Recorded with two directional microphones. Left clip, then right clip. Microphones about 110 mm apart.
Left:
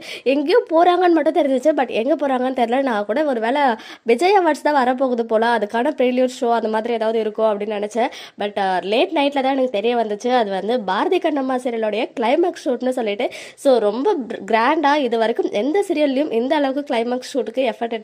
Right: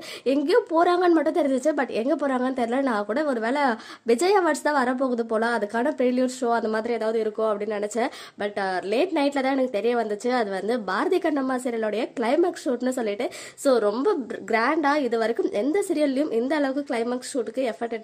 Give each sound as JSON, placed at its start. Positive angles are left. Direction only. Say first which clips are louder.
{"t": 0.2, "sound": "a woman's voice", "louder": "left 5 dB", "side_deg": 15}
{"t": 14.5, "sound": "a woman's voice", "louder": "left 6 dB", "side_deg": 30}